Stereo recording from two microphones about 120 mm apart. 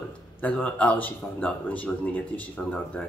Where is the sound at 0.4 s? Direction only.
10° left (ahead or behind).